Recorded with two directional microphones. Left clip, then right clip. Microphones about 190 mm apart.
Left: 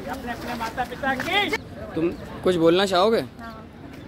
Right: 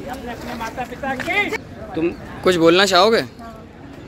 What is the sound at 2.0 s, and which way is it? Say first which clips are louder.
Speech: right 3 dB; 50° left (ahead or behind).